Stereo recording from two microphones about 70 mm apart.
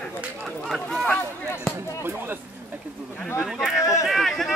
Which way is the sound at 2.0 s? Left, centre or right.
Right.